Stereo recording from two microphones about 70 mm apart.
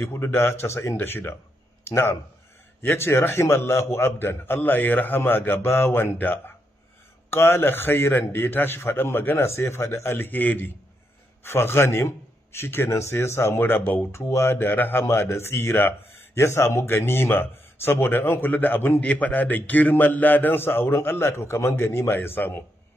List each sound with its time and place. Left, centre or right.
0.0 s speech: left
11.4 s speech: left
14.1 s speech: left